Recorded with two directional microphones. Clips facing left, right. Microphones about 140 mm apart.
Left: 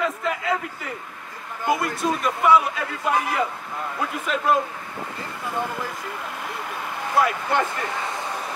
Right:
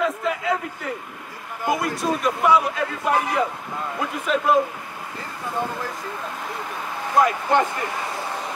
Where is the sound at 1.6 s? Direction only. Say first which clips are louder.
Even; centre (ahead or behind).